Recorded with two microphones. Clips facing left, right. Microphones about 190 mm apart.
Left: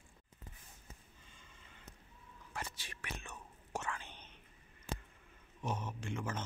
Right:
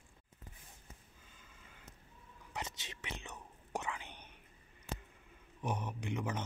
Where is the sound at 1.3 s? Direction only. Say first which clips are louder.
Right 1 dB; 5° right (ahead or behind).